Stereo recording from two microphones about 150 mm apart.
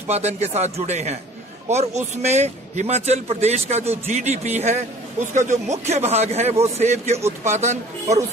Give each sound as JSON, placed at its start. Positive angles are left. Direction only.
{"t": 0.1, "sound": "a man's voice", "side_deg": -45}